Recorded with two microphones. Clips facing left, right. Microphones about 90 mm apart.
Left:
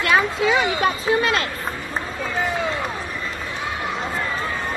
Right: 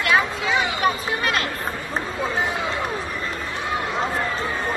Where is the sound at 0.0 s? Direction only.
30° left (ahead or behind).